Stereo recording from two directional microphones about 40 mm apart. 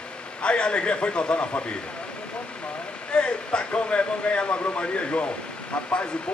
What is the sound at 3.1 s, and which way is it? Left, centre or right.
A man's voice, left.